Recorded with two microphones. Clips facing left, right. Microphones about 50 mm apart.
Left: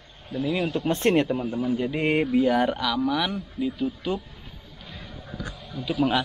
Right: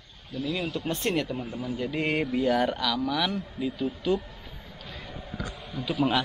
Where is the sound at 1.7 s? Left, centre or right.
Centre.